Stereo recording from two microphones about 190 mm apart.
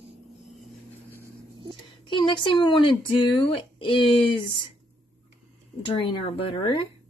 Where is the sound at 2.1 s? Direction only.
25° left (ahead or behind).